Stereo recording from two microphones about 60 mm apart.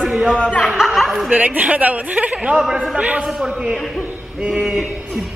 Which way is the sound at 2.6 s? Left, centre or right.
Centre.